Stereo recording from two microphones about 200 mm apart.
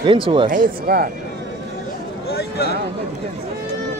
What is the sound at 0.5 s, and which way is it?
Speech, 45° right (ahead or behind).